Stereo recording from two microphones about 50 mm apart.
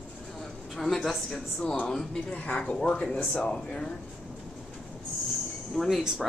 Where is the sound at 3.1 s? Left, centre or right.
Left.